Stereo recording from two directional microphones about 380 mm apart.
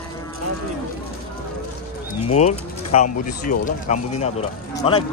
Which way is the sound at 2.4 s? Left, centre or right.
Centre.